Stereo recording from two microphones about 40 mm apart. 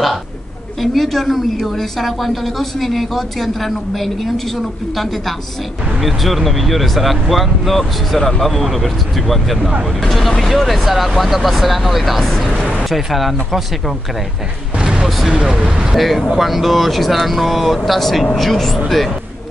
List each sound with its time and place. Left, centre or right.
0.7 s a woman's voice: centre
5.9 s a woman's voice: centre
14.8 s a sound: right
15.0 s speech: centre
15.5 s speech: right
16.3 s a woman's voice: centre